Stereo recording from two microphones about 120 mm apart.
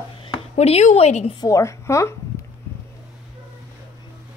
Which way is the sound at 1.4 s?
25° left (ahead or behind).